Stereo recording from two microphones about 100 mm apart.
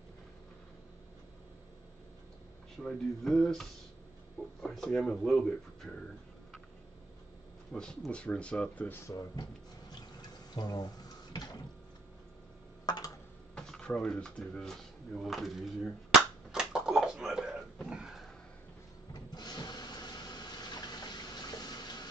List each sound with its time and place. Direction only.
2.8 s speech: 5° left (ahead or behind)
7.7 s speech: 10° left (ahead or behind)
9.0 s drawer open or close: 35° left (ahead or behind)
10.5 s speech: 40° left (ahead or behind)
12.8 s typing: 45° left (ahead or behind)
13.6 s speech: 10° left (ahead or behind)
15.2 s speech: centre (ahead or behind)
17.8 s a sound: 5° right (ahead or behind)
19.1 s a sound: 45° left (ahead or behind)